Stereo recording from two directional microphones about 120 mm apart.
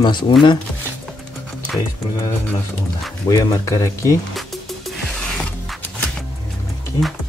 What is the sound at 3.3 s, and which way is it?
Speech, 30° left (ahead or behind).